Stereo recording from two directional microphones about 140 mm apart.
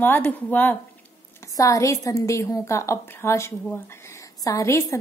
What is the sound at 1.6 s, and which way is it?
A woman's voice, 25° left (ahead or behind).